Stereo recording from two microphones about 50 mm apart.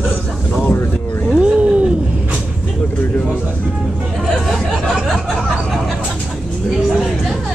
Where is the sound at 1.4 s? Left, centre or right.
Right.